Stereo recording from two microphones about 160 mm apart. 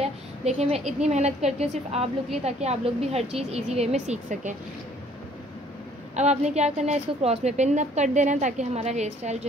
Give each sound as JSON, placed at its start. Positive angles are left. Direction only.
{"t": 0.0, "sound": "a woman's voice", "side_deg": -40}
{"t": 6.1, "sound": "a woman's voice", "side_deg": -45}